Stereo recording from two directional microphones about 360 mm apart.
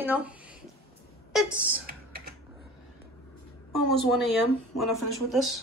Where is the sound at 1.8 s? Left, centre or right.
Right.